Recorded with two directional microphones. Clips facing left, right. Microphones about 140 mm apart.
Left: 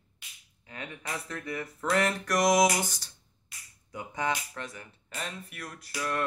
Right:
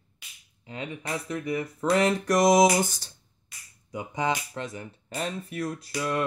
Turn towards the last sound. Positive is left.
turn(degrees=-20)  # may be behind; listen again after turning